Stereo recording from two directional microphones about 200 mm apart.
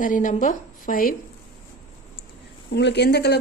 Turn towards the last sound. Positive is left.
turn(degrees=55)  # may be behind; listen again after turning